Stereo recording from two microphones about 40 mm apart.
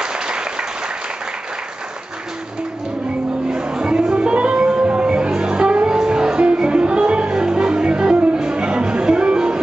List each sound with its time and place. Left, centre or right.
0.0 s applause: right
3.6 s music: right